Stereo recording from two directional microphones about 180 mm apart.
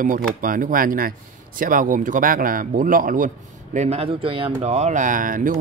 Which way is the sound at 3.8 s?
35° right (ahead or behind).